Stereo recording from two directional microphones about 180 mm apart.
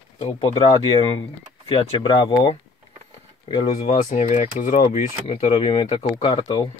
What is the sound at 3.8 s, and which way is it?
Speech, 40° left (ahead or behind).